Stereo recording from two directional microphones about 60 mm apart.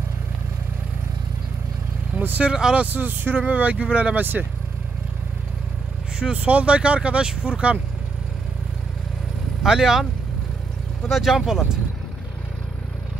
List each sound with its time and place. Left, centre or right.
2.1 s speech: right
6.1 s speech: centre
9.6 s speech: centre
11.1 s speech: centre